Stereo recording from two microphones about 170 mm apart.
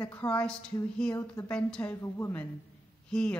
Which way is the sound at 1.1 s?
20° left (ahead or behind).